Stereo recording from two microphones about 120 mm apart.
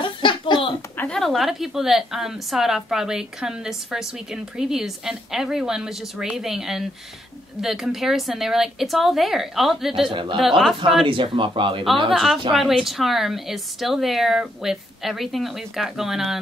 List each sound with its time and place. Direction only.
0.0 s a sound: 45° left (ahead or behind)
0.9 s a woman's voice: 5° left (ahead or behind)
10.1 s speech: 45° right (ahead or behind)
10.4 s a woman's voice: centre (ahead or behind)
11.1 s speech: 45° right (ahead or behind)
12.1 s a woman's voice: centre (ahead or behind)